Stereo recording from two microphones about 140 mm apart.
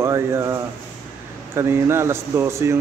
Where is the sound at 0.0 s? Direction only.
20° right (ahead or behind).